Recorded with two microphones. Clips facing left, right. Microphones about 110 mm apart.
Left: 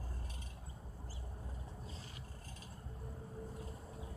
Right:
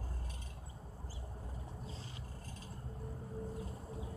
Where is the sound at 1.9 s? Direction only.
30° right (ahead or behind).